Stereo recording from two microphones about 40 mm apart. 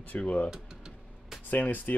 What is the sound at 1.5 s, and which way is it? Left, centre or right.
Speech, left.